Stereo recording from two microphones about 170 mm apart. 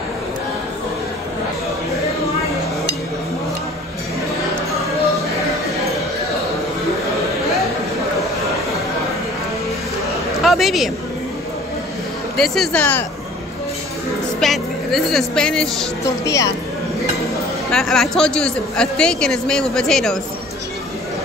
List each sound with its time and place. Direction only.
10.4 s speech: centre (ahead or behind)
12.4 s a man's voice: centre (ahead or behind)
14.4 s a woman's voice: centre (ahead or behind)
16.3 s speech: 20° left (ahead or behind)
17.6 s a man's voice: centre (ahead or behind)